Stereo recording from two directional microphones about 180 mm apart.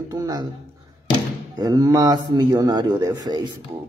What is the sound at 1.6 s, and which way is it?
A woman's voice, 20° right (ahead or behind).